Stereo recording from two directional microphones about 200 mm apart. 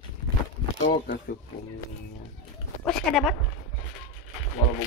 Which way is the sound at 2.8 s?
Centre (ahead or behind).